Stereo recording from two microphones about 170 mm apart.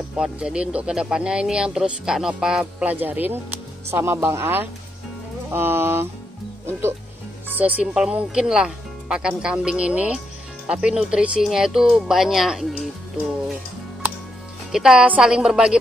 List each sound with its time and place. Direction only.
0.1 s speech: 5° right (ahead or behind)
7.4 s speech: 10° right (ahead or behind)
14.7 s speech: 5° right (ahead or behind)